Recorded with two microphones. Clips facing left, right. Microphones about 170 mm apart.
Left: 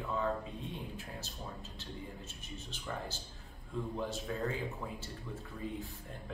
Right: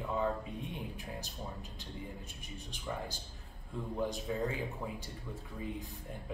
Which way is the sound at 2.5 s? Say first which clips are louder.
Right 1 dB; 15° right (ahead or behind).